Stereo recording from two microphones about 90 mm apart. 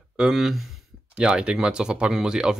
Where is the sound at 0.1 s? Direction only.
5° right (ahead or behind).